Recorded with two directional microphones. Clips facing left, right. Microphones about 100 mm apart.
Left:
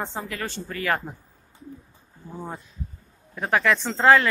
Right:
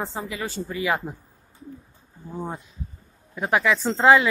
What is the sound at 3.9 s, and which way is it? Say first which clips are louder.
Speech: right 1 dB; 15° right (ahead or behind).